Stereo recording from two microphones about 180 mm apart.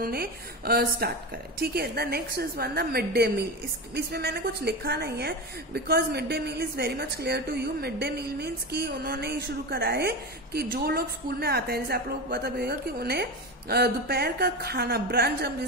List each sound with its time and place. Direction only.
0.0 s a woman's voice: 60° right (ahead or behind)